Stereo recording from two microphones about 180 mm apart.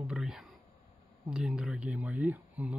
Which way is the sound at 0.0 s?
5° right (ahead or behind).